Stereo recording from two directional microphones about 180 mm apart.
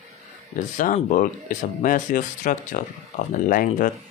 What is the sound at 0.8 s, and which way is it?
Speech, 45° left (ahead or behind).